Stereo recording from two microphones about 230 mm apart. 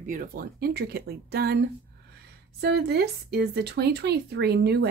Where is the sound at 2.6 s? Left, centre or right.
Right.